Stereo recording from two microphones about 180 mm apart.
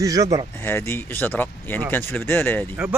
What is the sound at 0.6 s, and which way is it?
Speech, 15° left (ahead or behind).